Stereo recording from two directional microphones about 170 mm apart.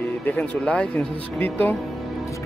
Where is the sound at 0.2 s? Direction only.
10° left (ahead or behind).